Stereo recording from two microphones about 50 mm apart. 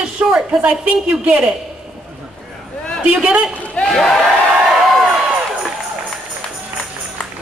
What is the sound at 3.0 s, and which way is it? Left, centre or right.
Speech, right.